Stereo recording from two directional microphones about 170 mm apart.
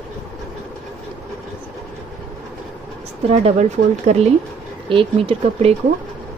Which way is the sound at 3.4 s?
40° right (ahead or behind).